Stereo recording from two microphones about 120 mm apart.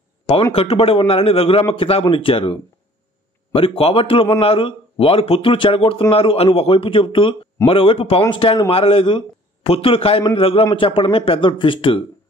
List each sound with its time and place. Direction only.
0.3 s a man's voice: 50° left (ahead or behind)